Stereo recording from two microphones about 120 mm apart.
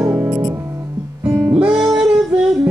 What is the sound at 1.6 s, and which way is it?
Music, 5° right (ahead or behind).